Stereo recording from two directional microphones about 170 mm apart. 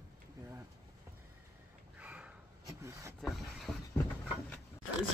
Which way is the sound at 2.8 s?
15° right (ahead or behind).